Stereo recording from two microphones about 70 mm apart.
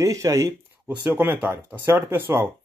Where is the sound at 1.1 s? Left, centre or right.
Right.